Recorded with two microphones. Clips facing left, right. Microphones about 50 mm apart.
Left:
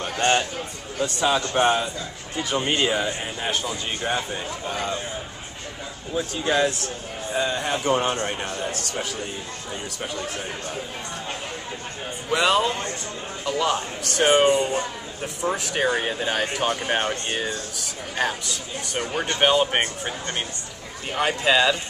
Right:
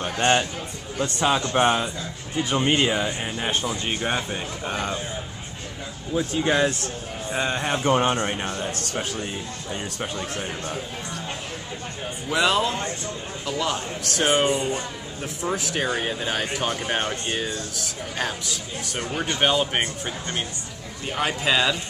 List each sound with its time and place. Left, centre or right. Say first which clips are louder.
0.0 s a sound: right 1 dB; centre
1.2 s speech: even; centre
4.3 s a man's voice: even; right
6.4 s a man's voice: left 1 dB; centre
12.3 s speech: left 1 dB; centre
15.4 s speech: left 2 dB; centre
19.3 s speech: left 3 dB; centre